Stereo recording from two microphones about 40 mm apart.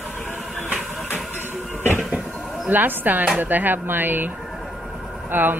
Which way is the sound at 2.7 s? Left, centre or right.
Right.